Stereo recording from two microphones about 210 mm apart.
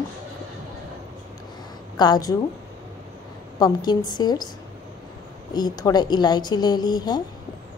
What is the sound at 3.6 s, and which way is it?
Speech, 20° left (ahead or behind).